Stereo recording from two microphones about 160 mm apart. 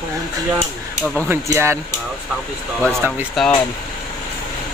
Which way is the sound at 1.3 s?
15° right (ahead or behind).